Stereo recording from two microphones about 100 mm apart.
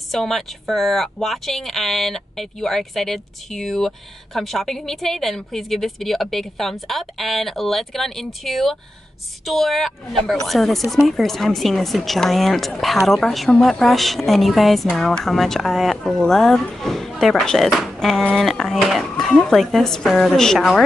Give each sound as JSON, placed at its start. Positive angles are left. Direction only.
{"t": 0.1, "sound": "a woman's voice", "side_deg": 0}